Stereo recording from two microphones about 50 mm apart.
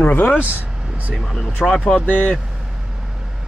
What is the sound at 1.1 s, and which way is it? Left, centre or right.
Speech, centre.